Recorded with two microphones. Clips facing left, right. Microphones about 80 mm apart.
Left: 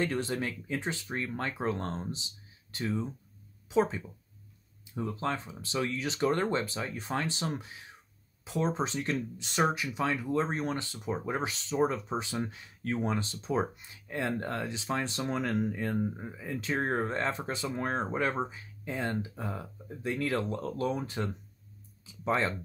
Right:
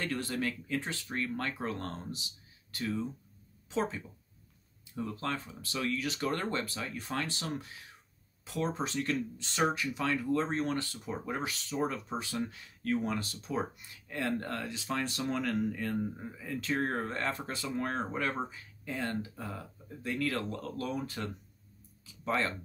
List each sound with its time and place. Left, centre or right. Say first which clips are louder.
0.0 s speech: left 3 dB; left
22.0 s music: left 3 dB; left